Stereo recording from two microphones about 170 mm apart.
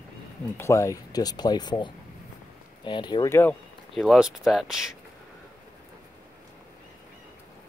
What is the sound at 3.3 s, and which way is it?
Speech, 10° left (ahead or behind).